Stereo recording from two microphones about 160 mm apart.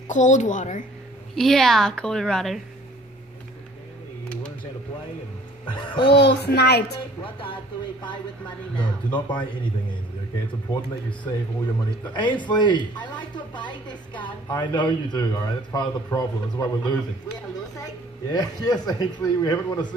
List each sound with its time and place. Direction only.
0.1 s a woman's voice: 50° left (ahead or behind)
1.3 s a woman's voice: centre (ahead or behind)
5.7 s a sound: 30° left (ahead or behind)
6.1 s a child's voice: 90° left
8.7 s a man's voice: 30° left (ahead or behind)
12.1 s a man's voice: 30° left (ahead or behind)
18.3 s a man's voice: 25° left (ahead or behind)